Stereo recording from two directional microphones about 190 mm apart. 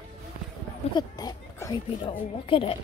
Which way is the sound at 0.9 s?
20° left (ahead or behind).